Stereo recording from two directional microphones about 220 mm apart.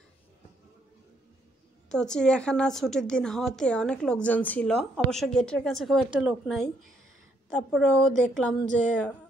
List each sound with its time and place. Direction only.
1.9 s a woman's voice: 5° left (ahead or behind)